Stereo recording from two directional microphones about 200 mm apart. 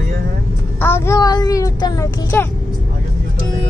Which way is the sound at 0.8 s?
10° left (ahead or behind).